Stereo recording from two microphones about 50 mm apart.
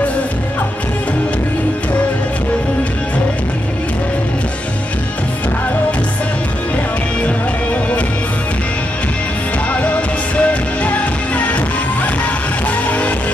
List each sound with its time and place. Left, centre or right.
7.2 s music: left
9.7 s music: left